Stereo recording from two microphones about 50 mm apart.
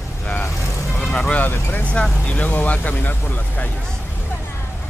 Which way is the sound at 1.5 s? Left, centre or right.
Left.